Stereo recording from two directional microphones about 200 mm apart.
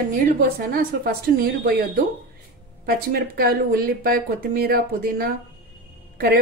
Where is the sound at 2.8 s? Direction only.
50° right (ahead or behind).